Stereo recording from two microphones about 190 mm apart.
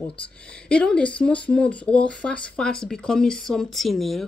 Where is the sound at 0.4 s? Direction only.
5° left (ahead or behind).